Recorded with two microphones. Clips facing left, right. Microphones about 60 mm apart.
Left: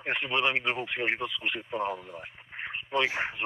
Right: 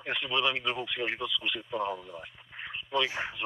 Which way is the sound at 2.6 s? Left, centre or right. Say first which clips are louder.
Left 2 dB; left.